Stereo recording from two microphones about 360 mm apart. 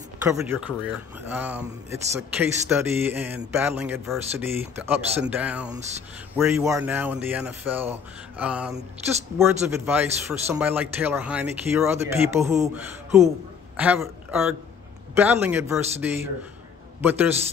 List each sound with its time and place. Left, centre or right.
0.2 s a man's voice: centre